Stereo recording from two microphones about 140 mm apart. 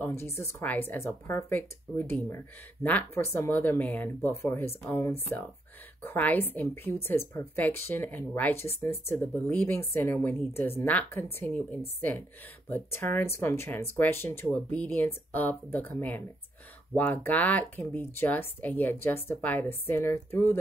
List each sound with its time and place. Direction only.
0.0 s speech: 20° left (ahead or behind)